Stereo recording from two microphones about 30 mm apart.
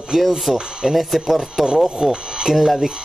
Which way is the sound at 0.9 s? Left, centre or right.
Centre.